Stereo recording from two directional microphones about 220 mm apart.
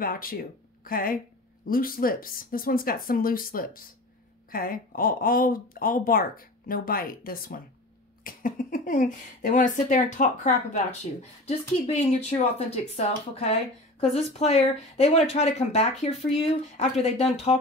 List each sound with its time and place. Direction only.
0.0 s speech: 40° left (ahead or behind)